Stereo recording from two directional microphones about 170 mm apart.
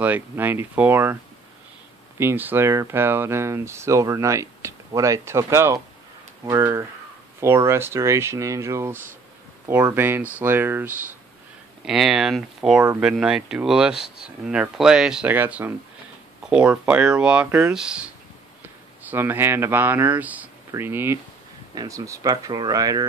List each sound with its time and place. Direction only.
0.0 s speech: 10° right (ahead or behind)
2.1 s speech: 15° right (ahead or behind)
11.8 s speech: centre (ahead or behind); by 23.0 s 20° right (ahead or behind)